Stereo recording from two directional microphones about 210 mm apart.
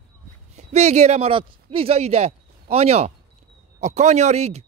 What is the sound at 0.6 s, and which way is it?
Speech, 30° right (ahead or behind).